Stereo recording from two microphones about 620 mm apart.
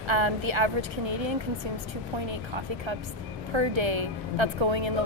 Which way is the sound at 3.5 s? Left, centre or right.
Right.